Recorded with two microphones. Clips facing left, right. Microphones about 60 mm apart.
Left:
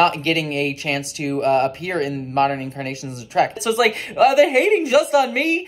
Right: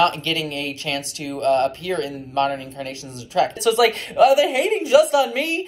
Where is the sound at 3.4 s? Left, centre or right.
Left.